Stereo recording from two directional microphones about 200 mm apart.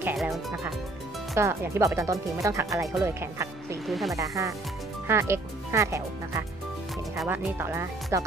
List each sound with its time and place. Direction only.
0.0 s speech: centre (ahead or behind)
1.3 s speech: 15° right (ahead or behind)
3.8 s speech: centre (ahead or behind)
4.1 s speech: 15° right (ahead or behind)